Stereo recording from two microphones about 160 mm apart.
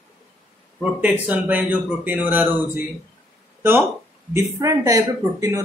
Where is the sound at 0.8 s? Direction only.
5° right (ahead or behind).